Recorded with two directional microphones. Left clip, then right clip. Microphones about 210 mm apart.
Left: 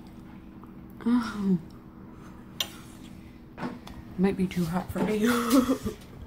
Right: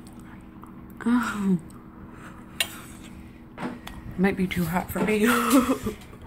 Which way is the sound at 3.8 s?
Centre (ahead or behind).